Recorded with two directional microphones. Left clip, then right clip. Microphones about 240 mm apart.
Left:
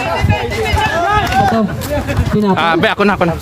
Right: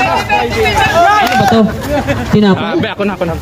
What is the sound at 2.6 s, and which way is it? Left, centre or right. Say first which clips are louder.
Speech: left 3 dB; left.